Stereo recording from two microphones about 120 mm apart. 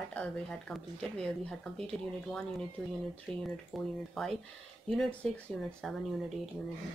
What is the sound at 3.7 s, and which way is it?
Speech, centre (ahead or behind).